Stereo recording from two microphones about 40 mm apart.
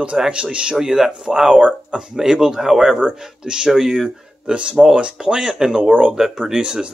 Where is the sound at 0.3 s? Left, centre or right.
Right.